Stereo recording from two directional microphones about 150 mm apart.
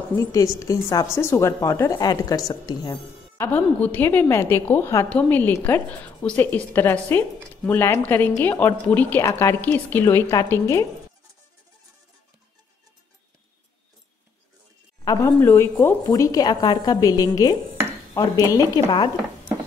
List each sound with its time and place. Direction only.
0.2 s a woman's voice: 20° left (ahead or behind)
3.3 s a woman's voice: 10° left (ahead or behind)
15.0 s a woman's voice: 15° left (ahead or behind)